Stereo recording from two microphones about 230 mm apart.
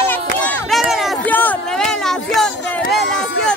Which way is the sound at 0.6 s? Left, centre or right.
Centre.